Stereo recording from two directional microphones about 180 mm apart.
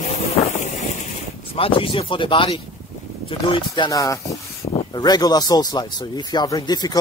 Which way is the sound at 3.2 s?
25° left (ahead or behind).